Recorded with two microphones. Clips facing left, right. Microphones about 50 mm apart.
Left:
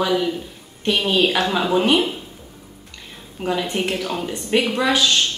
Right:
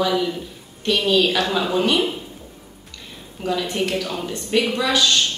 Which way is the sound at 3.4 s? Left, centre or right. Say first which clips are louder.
Even; left.